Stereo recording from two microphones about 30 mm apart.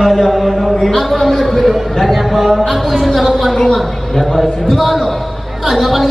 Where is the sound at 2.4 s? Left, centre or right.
Centre.